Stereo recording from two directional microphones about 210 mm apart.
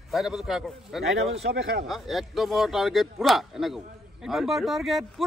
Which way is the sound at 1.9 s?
Centre (ahead or behind).